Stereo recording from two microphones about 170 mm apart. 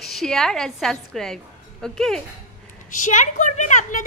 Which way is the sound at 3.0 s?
45° left (ahead or behind).